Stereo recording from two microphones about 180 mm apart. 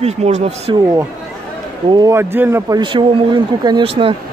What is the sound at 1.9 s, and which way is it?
Speech, 20° right (ahead or behind).